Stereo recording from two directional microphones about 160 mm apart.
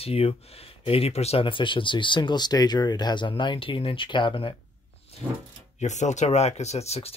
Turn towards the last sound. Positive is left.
turn(degrees=40)  # may be behind; listen again after turning